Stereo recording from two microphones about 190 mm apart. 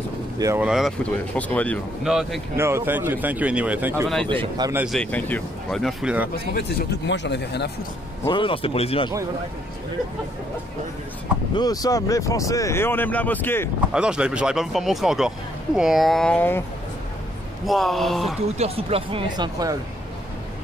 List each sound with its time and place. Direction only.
0.4 s speech: 15° right (ahead or behind)
0.7 s speech: centre (ahead or behind)
2.5 s speech: 15° right (ahead or behind)
4.3 s speech: 25° right (ahead or behind)
4.8 s speech: 5° left (ahead or behind)
7.1 s speech: 65° left (ahead or behind)
8.3 s speech: 25° left (ahead or behind)
11.5 s speech: 20° left (ahead or behind)
13.9 s speech: 5° right (ahead or behind)
17.6 s speech: centre (ahead or behind)
18.6 s speech: 30° right (ahead or behind)